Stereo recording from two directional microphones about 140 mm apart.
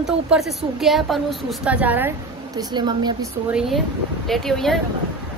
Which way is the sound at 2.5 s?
30° right (ahead or behind).